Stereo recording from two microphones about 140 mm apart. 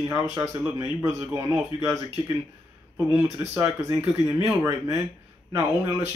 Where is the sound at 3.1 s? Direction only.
20° right (ahead or behind).